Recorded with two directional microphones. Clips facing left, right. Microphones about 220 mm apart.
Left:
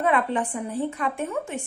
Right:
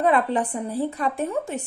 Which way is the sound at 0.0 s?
35° right (ahead or behind).